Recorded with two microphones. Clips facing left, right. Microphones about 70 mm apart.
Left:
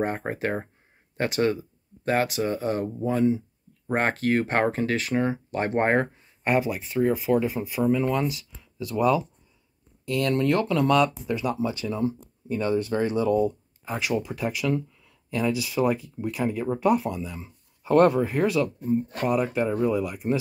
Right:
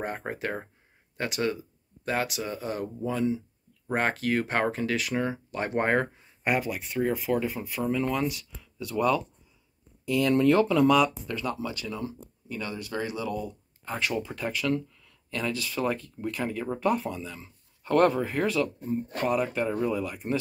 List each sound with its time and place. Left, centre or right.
0.2 s speech: left
1.1 s speech: left
3.9 s speech: left
5.1 s speech: centre
5.5 s speech: left
6.4 s speech: centre
10.1 s speech: centre
11.2 s speech: centre; by 13.6 s left
13.8 s speech: centre